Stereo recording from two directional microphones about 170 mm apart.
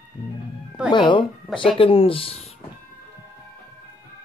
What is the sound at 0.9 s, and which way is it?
Speech, 30° left (ahead or behind).